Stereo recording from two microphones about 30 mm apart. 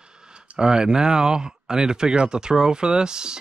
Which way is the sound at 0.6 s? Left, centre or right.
Right.